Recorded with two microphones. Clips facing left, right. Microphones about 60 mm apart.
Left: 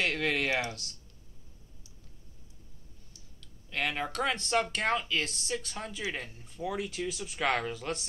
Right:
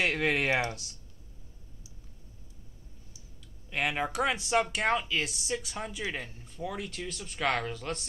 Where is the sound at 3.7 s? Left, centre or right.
Centre.